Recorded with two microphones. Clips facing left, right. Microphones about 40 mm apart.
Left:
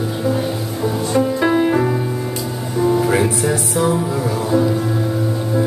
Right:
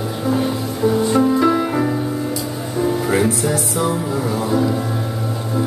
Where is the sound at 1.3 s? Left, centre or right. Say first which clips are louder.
Left 1 dB; left.